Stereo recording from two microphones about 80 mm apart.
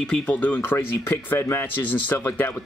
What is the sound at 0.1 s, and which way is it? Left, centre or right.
Speech, centre.